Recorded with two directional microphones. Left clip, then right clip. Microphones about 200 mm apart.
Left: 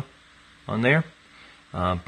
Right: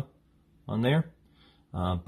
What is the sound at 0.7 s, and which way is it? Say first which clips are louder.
Speech: left 7 dB; 5° left (ahead or behind).